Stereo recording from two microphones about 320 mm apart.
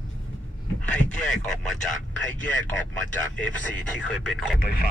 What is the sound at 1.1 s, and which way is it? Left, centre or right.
Speech, left.